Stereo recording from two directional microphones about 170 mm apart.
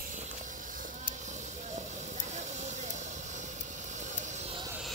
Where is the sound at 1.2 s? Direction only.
45° right (ahead or behind).